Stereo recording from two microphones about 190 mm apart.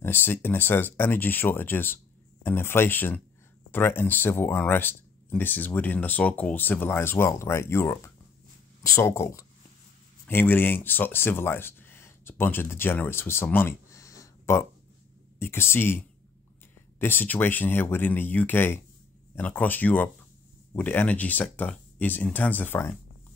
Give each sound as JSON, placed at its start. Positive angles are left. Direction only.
{"t": 0.0, "sound": "speech", "side_deg": 10}
{"t": 17.0, "sound": "speech", "side_deg": 10}